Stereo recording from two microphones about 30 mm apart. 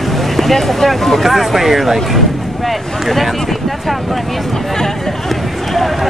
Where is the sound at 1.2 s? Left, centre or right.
Centre.